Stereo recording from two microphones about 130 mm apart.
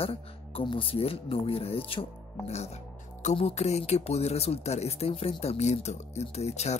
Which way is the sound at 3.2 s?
55° left (ahead or behind).